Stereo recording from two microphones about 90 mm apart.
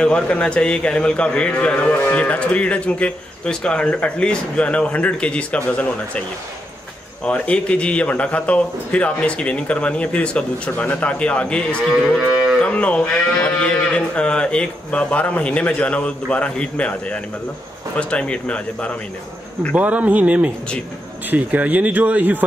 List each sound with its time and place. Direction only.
0.0 s a man's voice: 10° left (ahead or behind)
7.2 s a man's voice: 10° left (ahead or behind)
19.7 s speech: 15° right (ahead or behind)